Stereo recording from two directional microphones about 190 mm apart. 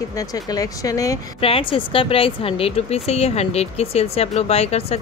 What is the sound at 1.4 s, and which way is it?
Speech, 30° left (ahead or behind).